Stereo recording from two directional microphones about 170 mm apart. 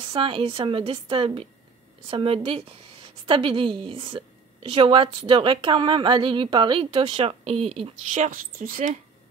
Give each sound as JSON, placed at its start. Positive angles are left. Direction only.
{"t": 0.0, "sound": "a woman's voice", "side_deg": -30}
{"t": 8.1, "sound": "a woman's voice", "side_deg": -50}